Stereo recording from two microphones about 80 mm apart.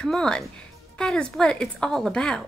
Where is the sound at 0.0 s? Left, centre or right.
Centre.